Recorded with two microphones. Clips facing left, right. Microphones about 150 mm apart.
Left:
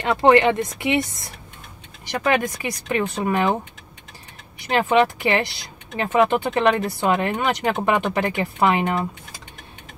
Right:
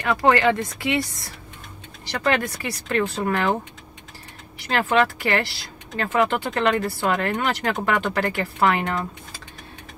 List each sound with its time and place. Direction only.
0.0 s speech: 25° left (ahead or behind)
4.6 s speech: 20° left (ahead or behind)